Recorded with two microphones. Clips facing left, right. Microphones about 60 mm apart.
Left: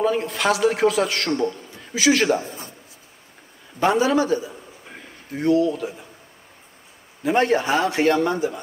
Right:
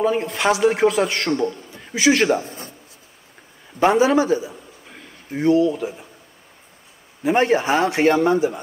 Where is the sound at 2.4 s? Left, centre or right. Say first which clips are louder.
Even; right.